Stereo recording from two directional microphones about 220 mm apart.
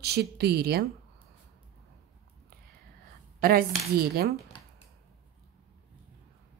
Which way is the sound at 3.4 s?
40° right (ahead or behind).